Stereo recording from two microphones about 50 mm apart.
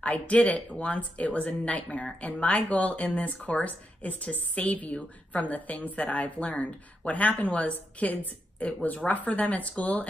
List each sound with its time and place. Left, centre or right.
0.0 s speech: left